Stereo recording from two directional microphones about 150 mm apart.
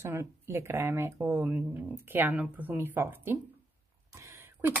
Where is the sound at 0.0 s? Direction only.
20° right (ahead or behind).